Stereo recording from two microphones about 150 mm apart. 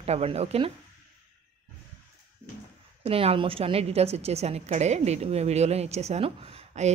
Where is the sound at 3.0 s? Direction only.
40° right (ahead or behind).